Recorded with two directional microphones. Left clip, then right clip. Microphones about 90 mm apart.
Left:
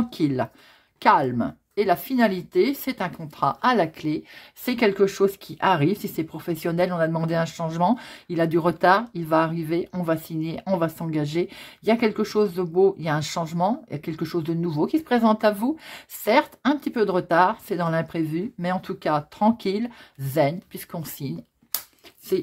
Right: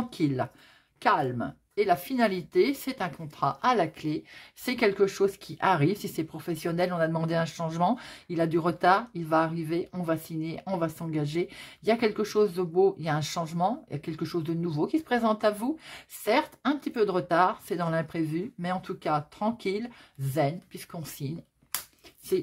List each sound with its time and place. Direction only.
0.1 s speech: 35° left (ahead or behind)
1.0 s speech: 55° left (ahead or behind)
1.9 s speech: 35° left (ahead or behind)
2.1 s speech: 25° left (ahead or behind)
4.6 s speech: 25° left (ahead or behind)
8.3 s speech: 35° left (ahead or behind)
20.3 s speech: 50° left (ahead or behind)